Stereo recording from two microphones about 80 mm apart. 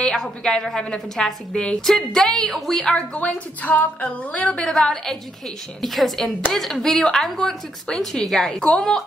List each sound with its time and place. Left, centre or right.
0.0 s a woman's voice: centre
4.6 s a woman's voice: centre